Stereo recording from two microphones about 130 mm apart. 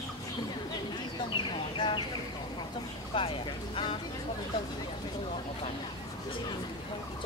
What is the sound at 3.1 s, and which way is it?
Speech, 40° left (ahead or behind).